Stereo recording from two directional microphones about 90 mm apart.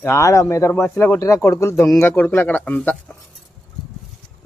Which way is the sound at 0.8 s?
20° left (ahead or behind).